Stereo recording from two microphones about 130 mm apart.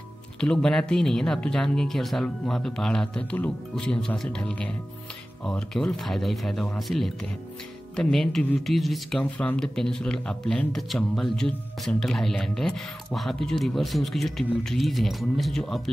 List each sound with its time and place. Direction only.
0.4 s speech: 5° left (ahead or behind)